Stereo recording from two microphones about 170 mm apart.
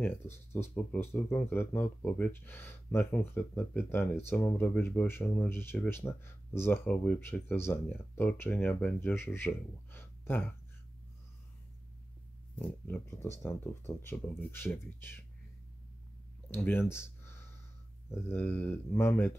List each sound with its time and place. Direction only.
0.0 s speech: 15° left (ahead or behind)
12.5 s speech: 10° left (ahead or behind)
16.4 s speech: 15° left (ahead or behind)